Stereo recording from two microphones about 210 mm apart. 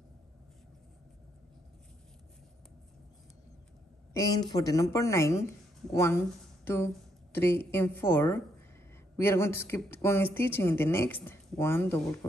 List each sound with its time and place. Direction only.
4.1 s a woman's voice: 15° left (ahead or behind)